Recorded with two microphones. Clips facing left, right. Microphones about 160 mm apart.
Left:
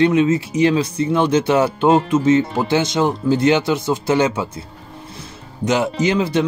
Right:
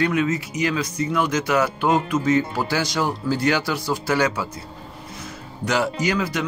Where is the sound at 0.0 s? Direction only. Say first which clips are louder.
Left 7 dB; 25° left (ahead or behind).